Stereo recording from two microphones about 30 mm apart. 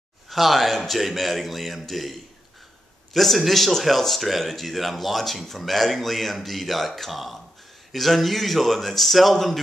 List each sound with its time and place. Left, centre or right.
0.3 s speech: centre